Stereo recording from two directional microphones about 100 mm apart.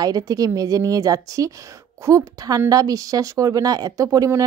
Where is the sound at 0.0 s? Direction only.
40° right (ahead or behind).